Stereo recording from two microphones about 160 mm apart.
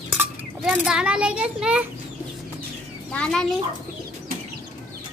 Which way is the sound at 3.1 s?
5° left (ahead or behind).